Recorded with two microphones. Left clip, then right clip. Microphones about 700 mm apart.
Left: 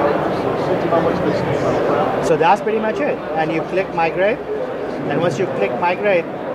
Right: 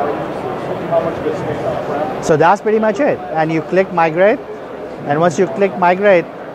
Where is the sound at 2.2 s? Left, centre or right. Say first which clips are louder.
Right 5 dB; right.